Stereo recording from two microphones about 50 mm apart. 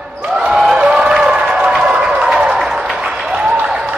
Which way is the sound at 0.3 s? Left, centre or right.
Centre.